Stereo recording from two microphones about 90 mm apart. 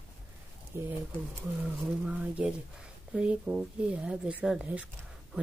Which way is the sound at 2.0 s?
10° right (ahead or behind).